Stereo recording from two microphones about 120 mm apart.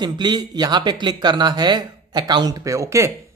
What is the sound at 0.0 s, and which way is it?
Speech, 35° right (ahead or behind).